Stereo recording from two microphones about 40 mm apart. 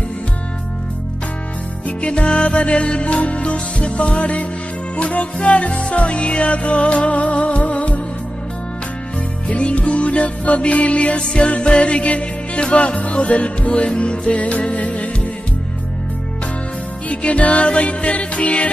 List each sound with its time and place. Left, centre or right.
1.9 s music: left
9.5 s music: left
17.1 s music: left